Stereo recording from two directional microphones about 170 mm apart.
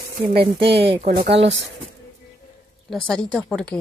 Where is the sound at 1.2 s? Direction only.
90° right.